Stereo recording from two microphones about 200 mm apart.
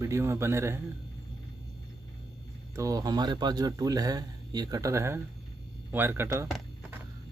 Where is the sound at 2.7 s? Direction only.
20° right (ahead or behind).